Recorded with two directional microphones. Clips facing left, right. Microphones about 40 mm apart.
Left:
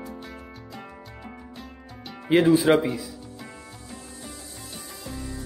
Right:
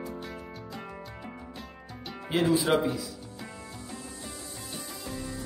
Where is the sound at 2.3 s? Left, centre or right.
Left.